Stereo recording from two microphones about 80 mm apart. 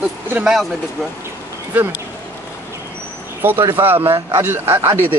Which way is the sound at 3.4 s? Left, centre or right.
Right.